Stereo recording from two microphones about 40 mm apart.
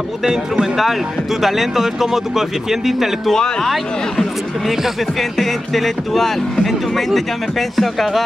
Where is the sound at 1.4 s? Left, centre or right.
Centre.